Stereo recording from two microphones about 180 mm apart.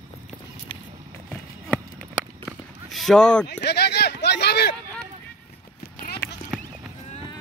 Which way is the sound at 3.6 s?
70° left (ahead or behind).